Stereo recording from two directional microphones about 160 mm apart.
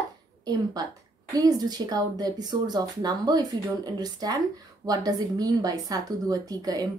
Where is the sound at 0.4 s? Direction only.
25° right (ahead or behind).